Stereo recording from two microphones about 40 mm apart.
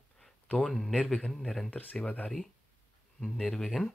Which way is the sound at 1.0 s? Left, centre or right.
Left.